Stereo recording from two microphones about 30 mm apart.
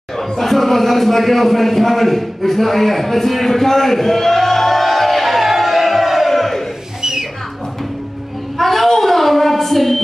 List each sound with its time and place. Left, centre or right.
0.4 s a sound: centre
7.0 s music: centre
8.5 s child singing: centre